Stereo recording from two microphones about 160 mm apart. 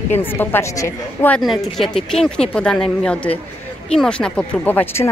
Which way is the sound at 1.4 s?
Centre (ahead or behind).